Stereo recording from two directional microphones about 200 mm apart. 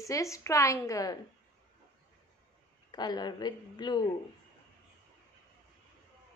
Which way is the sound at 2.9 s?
20° left (ahead or behind).